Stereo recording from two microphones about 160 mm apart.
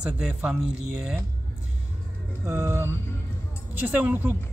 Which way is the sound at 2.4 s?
15° right (ahead or behind).